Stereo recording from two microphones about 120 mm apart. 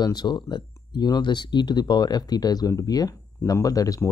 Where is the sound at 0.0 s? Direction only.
35° left (ahead or behind).